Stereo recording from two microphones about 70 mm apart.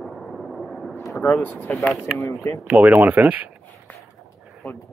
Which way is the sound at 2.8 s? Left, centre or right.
Right.